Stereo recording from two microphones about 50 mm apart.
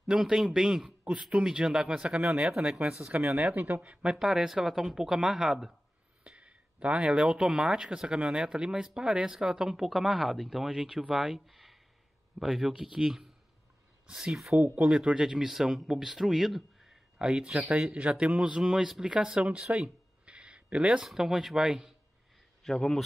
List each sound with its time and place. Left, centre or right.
0.0 s speech: centre
3.1 s speech: right; by 5.8 s centre
6.2 s speech: right; by 14.5 s centre
14.5 s speech: right
15.1 s speech: centre
19.7 s a sound: right
21.0 s speech: centre
22.6 s speech: centre